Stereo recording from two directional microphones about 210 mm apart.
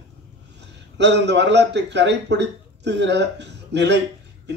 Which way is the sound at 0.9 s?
55° right (ahead or behind).